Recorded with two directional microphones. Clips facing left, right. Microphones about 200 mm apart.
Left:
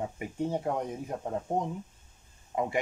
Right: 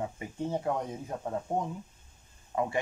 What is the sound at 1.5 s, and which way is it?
Speech, centre (ahead or behind).